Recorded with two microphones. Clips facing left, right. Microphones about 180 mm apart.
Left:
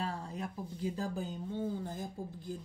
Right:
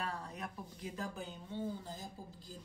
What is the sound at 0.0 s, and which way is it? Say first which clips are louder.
Speech: left 4 dB; 25° left (ahead or behind).